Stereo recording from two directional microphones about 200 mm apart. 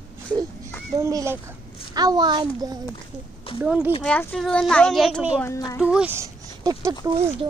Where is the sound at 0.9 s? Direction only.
15° right (ahead or behind).